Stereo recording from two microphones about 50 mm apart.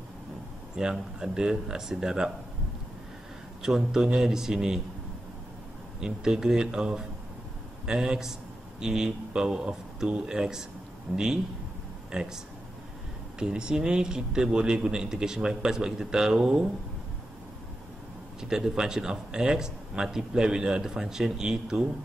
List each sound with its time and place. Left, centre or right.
0.7 s speech: centre
3.6 s speech: centre
5.9 s a man's voice: centre
13.4 s speech: centre
18.4 s speech: centre